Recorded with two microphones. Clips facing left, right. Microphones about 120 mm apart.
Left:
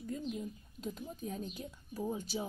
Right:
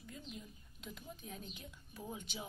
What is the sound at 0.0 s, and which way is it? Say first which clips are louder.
A woman's voice: left 11 dB; 40° left (ahead or behind).